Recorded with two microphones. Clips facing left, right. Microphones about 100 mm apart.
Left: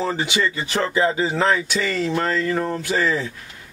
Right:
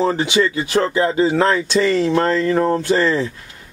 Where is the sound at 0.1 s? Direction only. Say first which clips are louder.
Right 5 dB; 20° right (ahead or behind).